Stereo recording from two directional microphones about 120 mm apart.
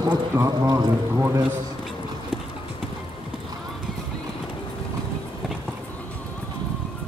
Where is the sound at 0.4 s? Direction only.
30° right (ahead or behind).